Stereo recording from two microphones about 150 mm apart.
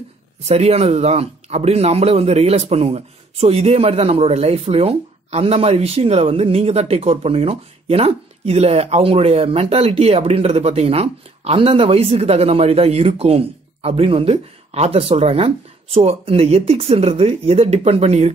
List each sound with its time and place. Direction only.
0.5 s speech: 45° right (ahead or behind)